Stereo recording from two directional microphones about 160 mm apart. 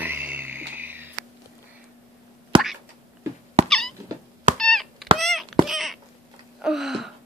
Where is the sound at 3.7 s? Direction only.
5° left (ahead or behind).